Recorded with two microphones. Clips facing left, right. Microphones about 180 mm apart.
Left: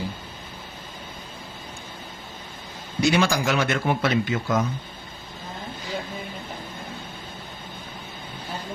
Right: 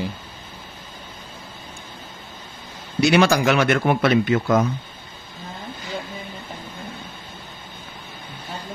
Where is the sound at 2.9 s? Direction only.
70° right (ahead or behind).